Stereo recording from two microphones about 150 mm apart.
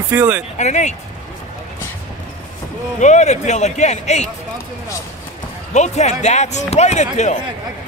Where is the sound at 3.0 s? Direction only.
50° left (ahead or behind).